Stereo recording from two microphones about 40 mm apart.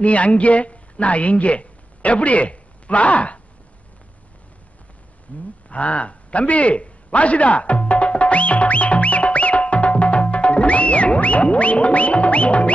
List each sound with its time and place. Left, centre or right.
0.0 s a woman's voice: left
5.3 s grunt: left
5.7 s a sound: left